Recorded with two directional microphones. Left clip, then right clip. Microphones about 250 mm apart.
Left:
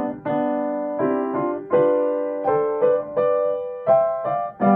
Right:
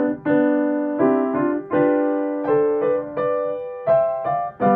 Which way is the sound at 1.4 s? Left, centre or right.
Centre.